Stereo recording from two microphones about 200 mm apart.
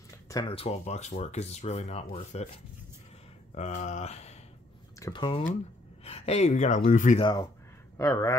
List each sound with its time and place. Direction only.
0.3 s speech: 25° left (ahead or behind)
3.5 s speech: 35° left (ahead or behind)
4.9 s speech: 20° left (ahead or behind); by 7.2 s 40° left (ahead or behind)
7.2 s speech: 25° left (ahead or behind)